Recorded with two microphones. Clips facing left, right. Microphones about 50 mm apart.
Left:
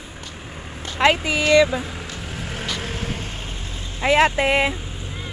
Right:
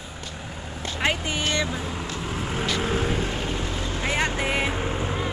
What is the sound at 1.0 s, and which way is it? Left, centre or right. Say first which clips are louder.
Vehicle: left 8 dB; left.